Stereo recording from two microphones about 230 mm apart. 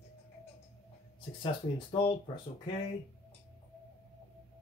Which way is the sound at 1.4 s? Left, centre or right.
Left.